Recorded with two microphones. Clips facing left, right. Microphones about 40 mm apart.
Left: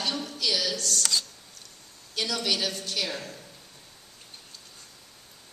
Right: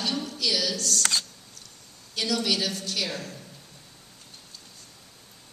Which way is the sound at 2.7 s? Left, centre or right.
Left.